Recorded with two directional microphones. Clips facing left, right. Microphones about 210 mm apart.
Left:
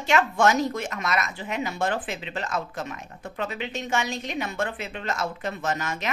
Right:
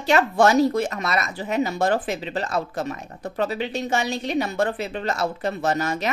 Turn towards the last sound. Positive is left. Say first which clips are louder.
# right 6 dB
turn(degrees=-35)  # may be behind; listen again after turning